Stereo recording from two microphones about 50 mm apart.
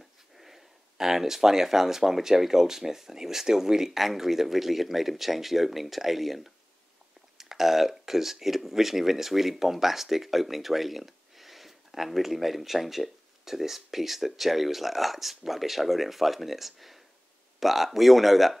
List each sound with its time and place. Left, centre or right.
0.4 s speech: centre